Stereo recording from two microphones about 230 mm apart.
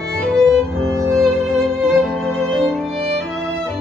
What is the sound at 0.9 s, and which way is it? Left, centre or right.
Violin, centre.